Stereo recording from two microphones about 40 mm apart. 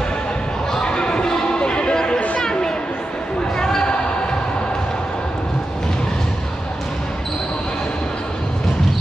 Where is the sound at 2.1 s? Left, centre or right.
Left.